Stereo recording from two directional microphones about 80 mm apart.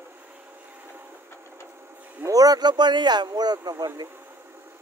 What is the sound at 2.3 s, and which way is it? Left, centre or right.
Speech, right.